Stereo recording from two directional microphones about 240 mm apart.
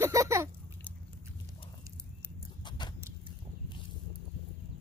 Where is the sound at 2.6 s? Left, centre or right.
Centre.